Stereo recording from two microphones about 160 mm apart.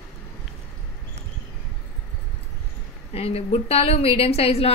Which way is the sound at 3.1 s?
40° left (ahead or behind).